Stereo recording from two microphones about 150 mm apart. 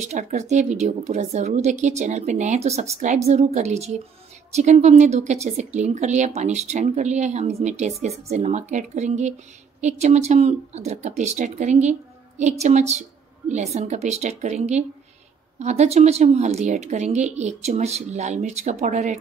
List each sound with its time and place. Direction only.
0.0 s a woman's voice: 50° right (ahead or behind)